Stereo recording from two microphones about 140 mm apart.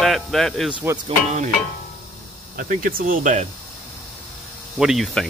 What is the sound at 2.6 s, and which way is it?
Speech, 80° right.